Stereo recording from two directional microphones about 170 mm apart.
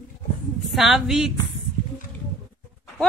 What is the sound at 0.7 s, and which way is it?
Speech, centre (ahead or behind).